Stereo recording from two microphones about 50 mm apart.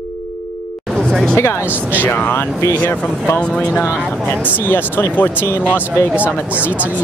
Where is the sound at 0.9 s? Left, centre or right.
Centre.